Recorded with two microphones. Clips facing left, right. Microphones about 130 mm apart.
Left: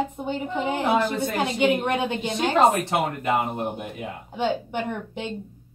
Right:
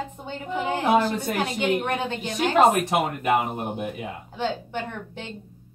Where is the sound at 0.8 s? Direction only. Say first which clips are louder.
Right 2 dB; 15° right (ahead or behind).